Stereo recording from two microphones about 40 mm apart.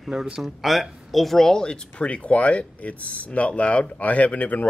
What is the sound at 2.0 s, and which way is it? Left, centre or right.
Speech, left.